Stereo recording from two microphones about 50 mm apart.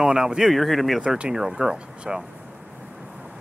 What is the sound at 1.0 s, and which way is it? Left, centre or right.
Speech, centre.